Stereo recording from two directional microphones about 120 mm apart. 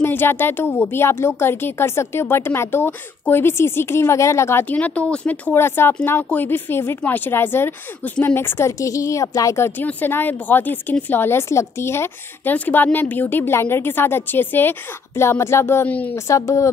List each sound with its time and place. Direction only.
0.0 s speech: 20° left (ahead or behind)
16.3 s speech: 25° left (ahead or behind)